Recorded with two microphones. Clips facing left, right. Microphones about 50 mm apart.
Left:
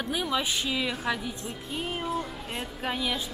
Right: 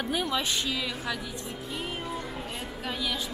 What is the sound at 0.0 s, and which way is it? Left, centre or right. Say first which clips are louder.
A woman's voice: even; centre.